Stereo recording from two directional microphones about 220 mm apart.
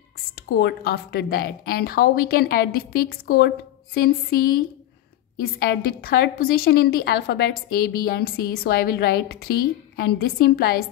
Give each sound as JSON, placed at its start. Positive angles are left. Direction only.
{"t": 0.5, "sound": "a woman's voice", "side_deg": 45}